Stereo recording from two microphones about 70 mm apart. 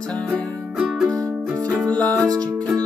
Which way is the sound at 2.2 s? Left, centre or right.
Right.